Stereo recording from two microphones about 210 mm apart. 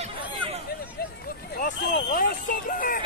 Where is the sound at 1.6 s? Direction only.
40° left (ahead or behind).